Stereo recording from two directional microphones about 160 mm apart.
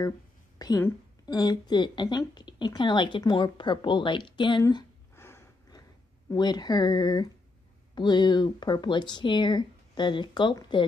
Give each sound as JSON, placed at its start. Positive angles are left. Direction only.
{"t": 0.6, "sound": "a woman's voice", "side_deg": 20}
{"t": 5.1, "sound": "a sound", "side_deg": 15}
{"t": 6.3, "sound": "a woman's voice", "side_deg": 25}